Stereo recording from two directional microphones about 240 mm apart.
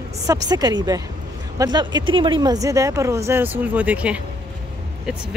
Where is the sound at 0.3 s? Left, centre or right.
Centre.